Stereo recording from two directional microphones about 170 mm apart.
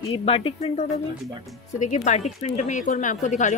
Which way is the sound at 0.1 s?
35° left (ahead or behind).